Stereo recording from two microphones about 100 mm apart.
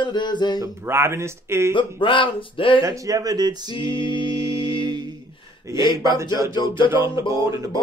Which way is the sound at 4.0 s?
55° left (ahead or behind).